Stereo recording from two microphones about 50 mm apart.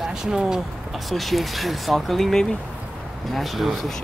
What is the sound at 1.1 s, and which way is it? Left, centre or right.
Speech, centre.